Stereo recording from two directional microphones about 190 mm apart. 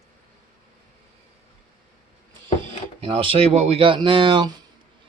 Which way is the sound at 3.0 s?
30° right (ahead or behind).